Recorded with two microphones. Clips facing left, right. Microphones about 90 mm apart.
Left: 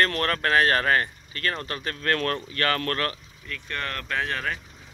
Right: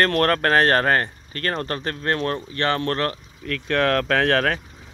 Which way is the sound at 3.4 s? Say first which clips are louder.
Right 12 dB; 80° right.